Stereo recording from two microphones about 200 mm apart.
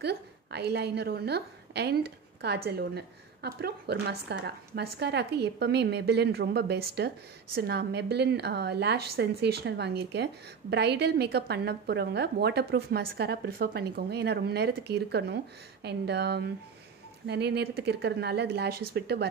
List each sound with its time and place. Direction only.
0.0 s a woman's voice: 55° right (ahead or behind)